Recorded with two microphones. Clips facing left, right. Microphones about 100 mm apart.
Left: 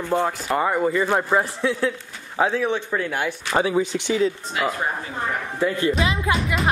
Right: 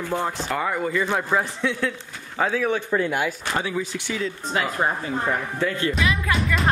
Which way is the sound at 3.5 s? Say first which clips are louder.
Left 6 dB; 25° left (ahead or behind).